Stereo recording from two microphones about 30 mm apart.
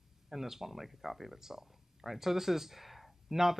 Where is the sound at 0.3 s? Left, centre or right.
Centre.